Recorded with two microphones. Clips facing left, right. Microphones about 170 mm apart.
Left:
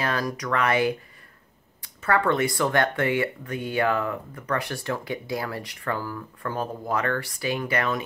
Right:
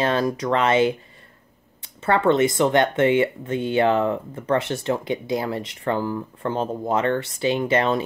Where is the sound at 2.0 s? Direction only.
25° right (ahead or behind).